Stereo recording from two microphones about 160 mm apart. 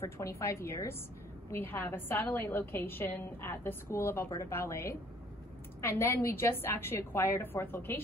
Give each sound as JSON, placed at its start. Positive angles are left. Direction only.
{"t": 0.0, "sound": "a woman's voice", "side_deg": 15}